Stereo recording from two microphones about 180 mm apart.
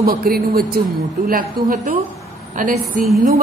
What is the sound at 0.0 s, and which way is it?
A woman's voice, 55° right (ahead or behind).